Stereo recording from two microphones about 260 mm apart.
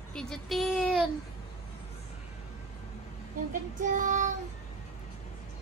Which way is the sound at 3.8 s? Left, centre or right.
Right.